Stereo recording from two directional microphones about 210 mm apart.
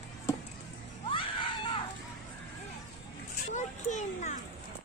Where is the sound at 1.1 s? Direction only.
25° left (ahead or behind).